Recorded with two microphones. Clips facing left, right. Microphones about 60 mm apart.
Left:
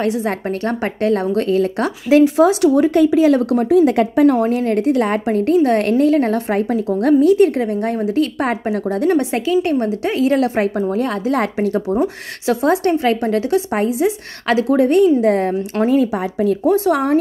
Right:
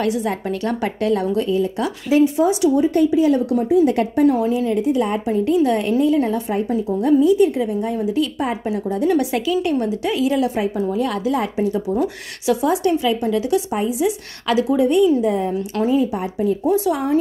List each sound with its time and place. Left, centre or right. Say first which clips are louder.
0.0 s a woman's voice: left 2 dB; left
1.5 s speech: left 3 dB; left
4.4 s a woman's voice: left 2 dB; left
7.0 s a woman's voice: left 3 dB; left
11.3 s a woman's voice: left 2 dB; left
12.0 s a woman's voice: left 3 dB; left
16.7 s a woman's voice: left 3 dB; left